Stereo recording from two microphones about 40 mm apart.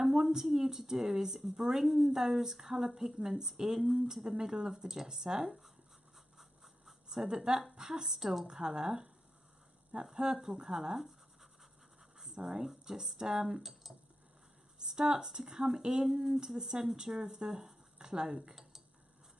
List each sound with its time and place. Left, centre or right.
0.1 s a woman's voice: centre
6.3 s a sound: centre
7.2 s a woman's voice: centre
8.5 s a woman's voice: centre
10.0 s a woman's voice: centre
12.2 s a sound: centre
12.6 s a woman's voice: centre
18.5 s tick-tock: centre